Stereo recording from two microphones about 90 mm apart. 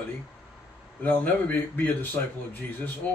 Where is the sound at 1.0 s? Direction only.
20° left (ahead or behind).